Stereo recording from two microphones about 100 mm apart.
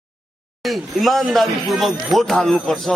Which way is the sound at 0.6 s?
Centre (ahead or behind).